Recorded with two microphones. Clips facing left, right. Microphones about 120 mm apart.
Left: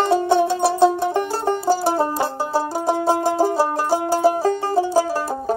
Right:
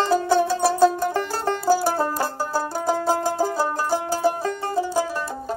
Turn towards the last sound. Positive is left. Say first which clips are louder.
# left 5 dB
turn(degrees=30)  # may be behind; listen again after turning